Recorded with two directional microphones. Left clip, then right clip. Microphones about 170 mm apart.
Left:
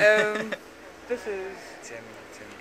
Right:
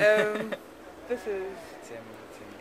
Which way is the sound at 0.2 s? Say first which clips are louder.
Left 2 dB; 10° right (ahead or behind).